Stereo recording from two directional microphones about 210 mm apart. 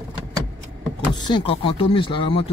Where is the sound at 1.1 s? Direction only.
20° left (ahead or behind).